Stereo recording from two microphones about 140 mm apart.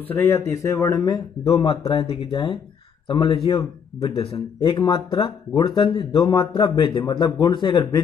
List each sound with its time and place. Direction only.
0.1 s a man's voice: 15° left (ahead or behind)
1.4 s a man's voice: 45° left (ahead or behind)